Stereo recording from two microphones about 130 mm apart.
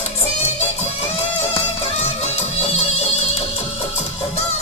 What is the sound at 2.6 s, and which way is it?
Music, 55° left (ahead or behind).